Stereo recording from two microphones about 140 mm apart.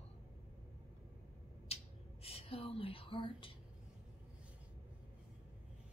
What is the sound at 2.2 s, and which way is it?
Speech, 45° left (ahead or behind).